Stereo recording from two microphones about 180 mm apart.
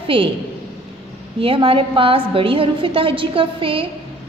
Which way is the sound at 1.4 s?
30° right (ahead or behind).